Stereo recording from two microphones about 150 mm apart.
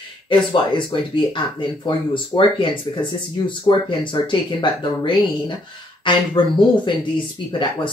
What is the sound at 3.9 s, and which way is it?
Speech, 30° left (ahead or behind).